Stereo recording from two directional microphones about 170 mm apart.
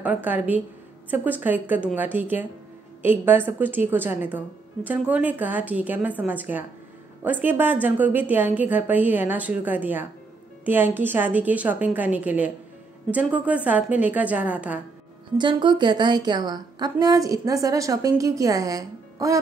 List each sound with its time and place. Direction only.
0.0 s a woman's voice: 10° right (ahead or behind)
15.3 s a woman's voice: 25° right (ahead or behind)